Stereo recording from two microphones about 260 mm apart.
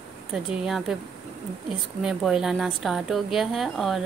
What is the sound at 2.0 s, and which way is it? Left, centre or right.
A woman's voice, centre.